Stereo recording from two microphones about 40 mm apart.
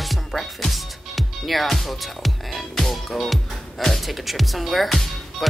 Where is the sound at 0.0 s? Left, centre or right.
Centre.